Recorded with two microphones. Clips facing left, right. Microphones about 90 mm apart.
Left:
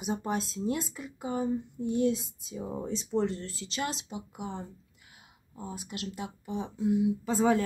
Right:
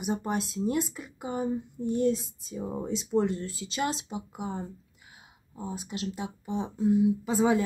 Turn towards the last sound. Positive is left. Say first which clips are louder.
# right 1 dB
turn(degrees=-10)  # may be behind; listen again after turning